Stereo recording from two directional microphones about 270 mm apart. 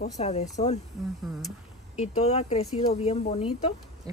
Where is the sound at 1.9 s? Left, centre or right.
Left.